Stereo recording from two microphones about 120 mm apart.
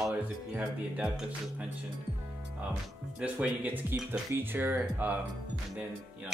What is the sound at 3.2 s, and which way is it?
Speech, 10° right (ahead or behind).